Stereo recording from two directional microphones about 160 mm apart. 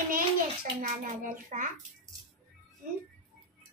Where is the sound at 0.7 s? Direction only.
50° right (ahead or behind).